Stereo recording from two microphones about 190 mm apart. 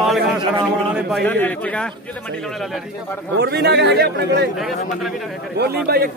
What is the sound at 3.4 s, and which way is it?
A man's voice, 60° right (ahead or behind).